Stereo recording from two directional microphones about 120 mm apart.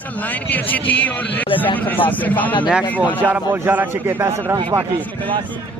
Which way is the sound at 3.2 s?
15° right (ahead or behind).